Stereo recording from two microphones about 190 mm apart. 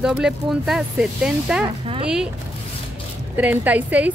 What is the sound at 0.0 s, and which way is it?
Speech, 5° right (ahead or behind).